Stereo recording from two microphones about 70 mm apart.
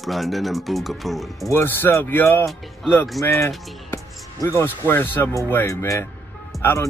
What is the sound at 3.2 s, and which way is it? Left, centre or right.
Speech, left.